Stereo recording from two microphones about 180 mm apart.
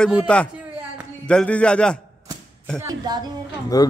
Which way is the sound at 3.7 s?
20° left (ahead or behind).